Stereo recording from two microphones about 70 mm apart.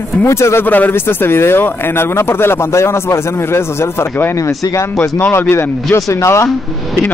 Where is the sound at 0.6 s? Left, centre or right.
Left.